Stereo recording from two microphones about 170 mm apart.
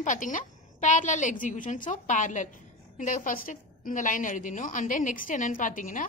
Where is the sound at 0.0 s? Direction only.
50° left (ahead or behind).